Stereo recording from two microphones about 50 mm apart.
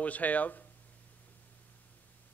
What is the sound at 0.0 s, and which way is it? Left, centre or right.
Speech, left.